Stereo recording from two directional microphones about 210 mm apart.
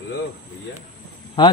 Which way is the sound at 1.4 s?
20° left (ahead or behind).